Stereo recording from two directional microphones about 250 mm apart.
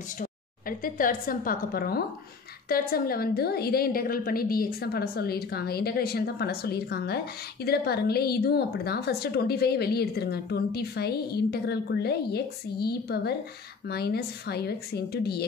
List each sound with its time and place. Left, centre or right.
0.7 s a woman's voice: left